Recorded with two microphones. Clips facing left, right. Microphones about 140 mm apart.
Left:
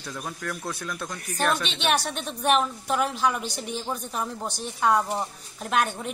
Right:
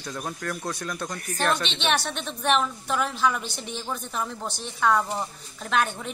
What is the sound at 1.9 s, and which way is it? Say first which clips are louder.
Speech: left 1 dB; 40° left (ahead or behind).